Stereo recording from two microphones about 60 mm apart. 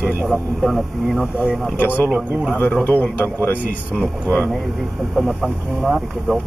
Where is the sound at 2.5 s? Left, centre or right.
Left.